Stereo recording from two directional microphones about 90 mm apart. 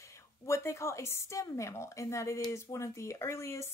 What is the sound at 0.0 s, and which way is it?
Speech, 35° left (ahead or behind).